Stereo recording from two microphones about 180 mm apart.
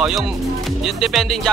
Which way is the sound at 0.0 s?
Centre (ahead or behind).